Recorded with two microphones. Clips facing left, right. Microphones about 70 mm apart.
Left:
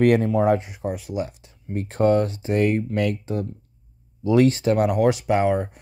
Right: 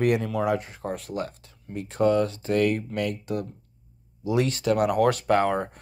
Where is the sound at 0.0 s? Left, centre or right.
Left.